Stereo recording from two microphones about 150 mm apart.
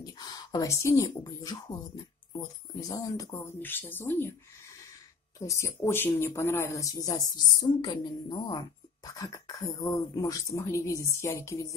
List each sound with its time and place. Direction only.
0.0 s speech: 25° left (ahead or behind)
2.9 s speech: 25° left (ahead or behind)
5.4 s speech: 20° left (ahead or behind)